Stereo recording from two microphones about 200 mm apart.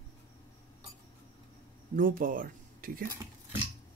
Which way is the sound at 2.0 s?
45° right (ahead or behind).